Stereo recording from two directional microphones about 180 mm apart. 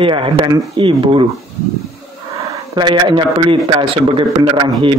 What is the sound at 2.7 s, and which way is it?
Speech, 25° right (ahead or behind).